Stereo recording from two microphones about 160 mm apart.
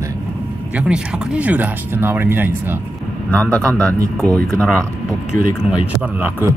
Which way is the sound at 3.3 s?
10° left (ahead or behind).